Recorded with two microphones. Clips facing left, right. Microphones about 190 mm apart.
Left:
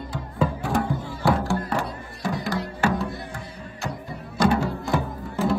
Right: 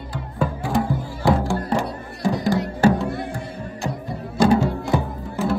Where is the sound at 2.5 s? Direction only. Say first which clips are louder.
Right 8 dB; 30° right (ahead or behind).